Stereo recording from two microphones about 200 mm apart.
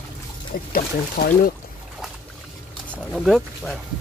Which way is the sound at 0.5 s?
45° left (ahead or behind).